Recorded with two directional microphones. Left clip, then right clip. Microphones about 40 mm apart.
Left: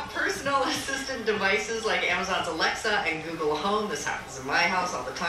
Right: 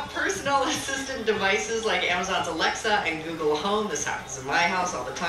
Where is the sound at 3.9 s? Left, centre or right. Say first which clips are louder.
Right 1 dB; centre.